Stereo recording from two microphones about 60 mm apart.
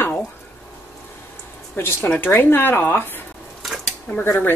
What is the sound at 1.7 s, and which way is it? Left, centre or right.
Speech, left.